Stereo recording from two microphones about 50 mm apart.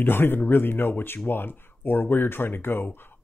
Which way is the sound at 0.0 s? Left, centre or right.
Left.